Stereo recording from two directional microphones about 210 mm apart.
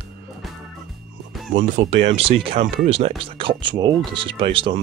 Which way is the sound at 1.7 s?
30° right (ahead or behind).